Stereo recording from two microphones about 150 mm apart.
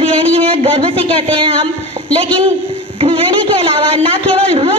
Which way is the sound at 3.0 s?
35° right (ahead or behind).